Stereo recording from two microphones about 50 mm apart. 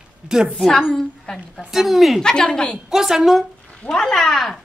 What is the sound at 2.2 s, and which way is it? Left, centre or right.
Speech, centre.